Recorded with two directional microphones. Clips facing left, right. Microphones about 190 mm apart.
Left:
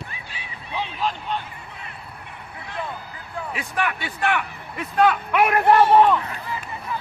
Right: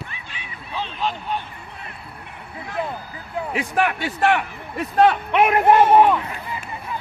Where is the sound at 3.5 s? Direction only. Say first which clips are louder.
Right 5 dB; 45° right (ahead or behind); by 6.6 s 15° right (ahead or behind).